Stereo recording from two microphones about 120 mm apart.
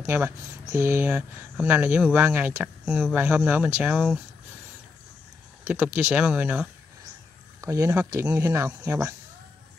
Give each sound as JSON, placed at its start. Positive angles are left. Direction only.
{"t": 0.0, "sound": "speech", "side_deg": -20}
{"t": 5.6, "sound": "speech", "side_deg": -15}
{"t": 7.6, "sound": "speech", "side_deg": -25}